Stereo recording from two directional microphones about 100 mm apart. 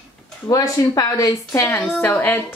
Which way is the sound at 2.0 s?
20° left (ahead or behind).